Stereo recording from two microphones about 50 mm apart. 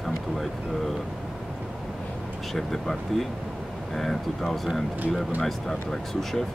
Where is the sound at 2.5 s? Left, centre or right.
Centre.